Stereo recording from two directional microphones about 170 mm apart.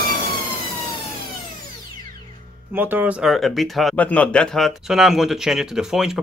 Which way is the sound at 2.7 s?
10° right (ahead or behind).